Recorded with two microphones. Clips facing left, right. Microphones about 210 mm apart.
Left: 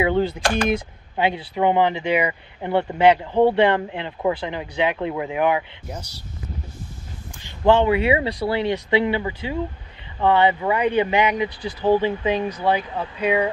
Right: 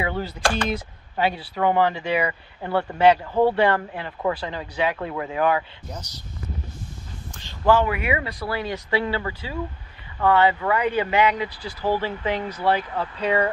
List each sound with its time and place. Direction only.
0.0 s speech: 25° left (ahead or behind)
7.3 s speech: 20° left (ahead or behind)